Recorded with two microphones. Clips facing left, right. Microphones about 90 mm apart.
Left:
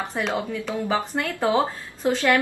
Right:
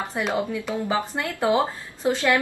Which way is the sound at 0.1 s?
15° right (ahead or behind).